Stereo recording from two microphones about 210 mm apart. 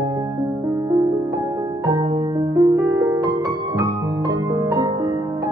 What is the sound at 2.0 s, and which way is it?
Music, 20° right (ahead or behind).